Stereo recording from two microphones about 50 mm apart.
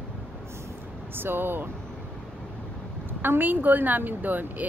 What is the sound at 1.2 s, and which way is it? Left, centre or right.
Speech, right.